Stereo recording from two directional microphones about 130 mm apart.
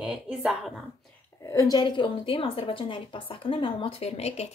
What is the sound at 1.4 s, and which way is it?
Speech, 25° left (ahead or behind).